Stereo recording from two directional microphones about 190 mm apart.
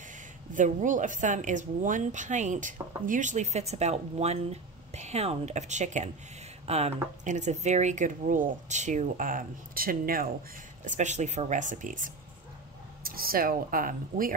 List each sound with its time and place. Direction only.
0.5 s speech: 40° right (ahead or behind)
10.9 s speech: 40° right (ahead or behind)